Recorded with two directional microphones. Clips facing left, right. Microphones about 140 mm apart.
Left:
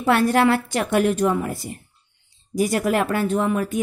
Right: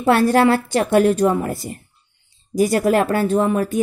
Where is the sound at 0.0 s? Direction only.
35° right (ahead or behind).